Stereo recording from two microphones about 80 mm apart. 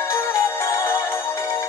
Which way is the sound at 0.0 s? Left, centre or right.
Left.